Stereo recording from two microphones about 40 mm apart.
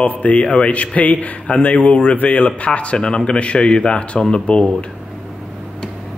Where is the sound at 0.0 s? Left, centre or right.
Left.